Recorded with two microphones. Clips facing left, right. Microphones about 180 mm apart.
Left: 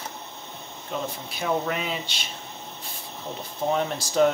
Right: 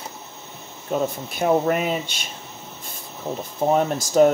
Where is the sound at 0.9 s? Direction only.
45° right (ahead or behind).